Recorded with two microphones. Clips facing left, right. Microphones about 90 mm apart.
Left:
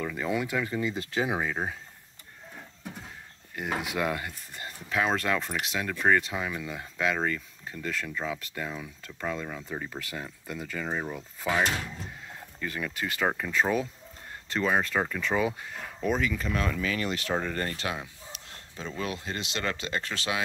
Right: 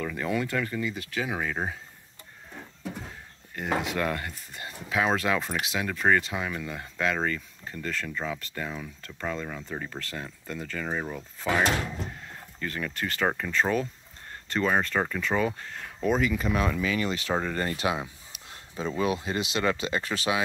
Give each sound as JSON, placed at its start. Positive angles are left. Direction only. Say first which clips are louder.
{"t": 0.0, "sound": "speech", "louder": "right 1 dB", "side_deg": 5}
{"t": 1.4, "sound": "speech", "louder": "even", "side_deg": 0}
{"t": 3.5, "sound": "speech", "louder": "right 2 dB", "side_deg": 5}